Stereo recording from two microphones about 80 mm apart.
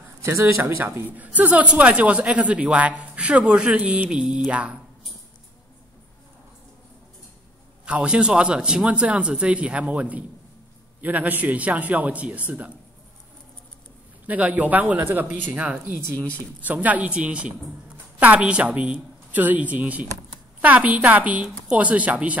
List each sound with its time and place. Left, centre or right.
0.2 s speech: right; by 4.7 s centre
7.8 s a man's voice: centre
14.2 s a man's voice: centre